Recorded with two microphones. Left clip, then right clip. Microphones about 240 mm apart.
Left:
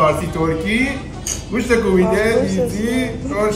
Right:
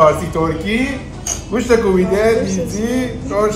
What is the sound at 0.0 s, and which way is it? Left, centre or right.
Speech, centre.